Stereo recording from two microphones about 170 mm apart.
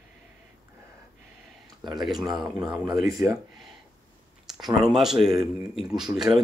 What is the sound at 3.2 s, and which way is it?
Speech, 15° right (ahead or behind).